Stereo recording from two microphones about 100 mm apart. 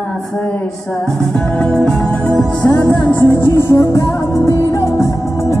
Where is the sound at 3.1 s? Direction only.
30° left (ahead or behind).